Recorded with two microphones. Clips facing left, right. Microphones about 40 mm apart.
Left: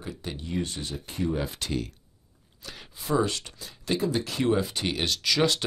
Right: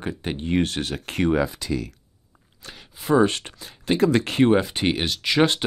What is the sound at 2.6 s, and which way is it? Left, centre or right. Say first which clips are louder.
Speech: right 7 dB; right.